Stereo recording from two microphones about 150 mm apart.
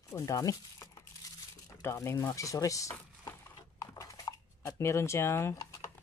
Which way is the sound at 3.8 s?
20° left (ahead or behind).